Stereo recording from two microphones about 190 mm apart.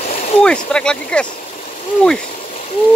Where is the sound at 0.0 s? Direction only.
40° left (ahead or behind).